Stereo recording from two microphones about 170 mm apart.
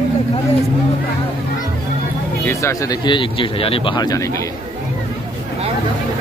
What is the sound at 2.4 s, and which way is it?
Speech, 15° left (ahead or behind).